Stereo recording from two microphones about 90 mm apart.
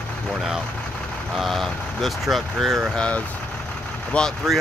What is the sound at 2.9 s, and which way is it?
Speech, 10° left (ahead or behind).